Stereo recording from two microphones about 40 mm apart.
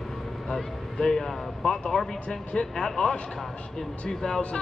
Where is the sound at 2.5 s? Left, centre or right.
Left.